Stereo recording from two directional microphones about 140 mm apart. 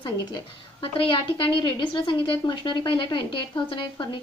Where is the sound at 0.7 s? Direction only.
40° left (ahead or behind).